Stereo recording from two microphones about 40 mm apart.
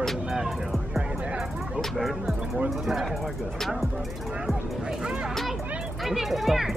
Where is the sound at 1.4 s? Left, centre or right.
Centre.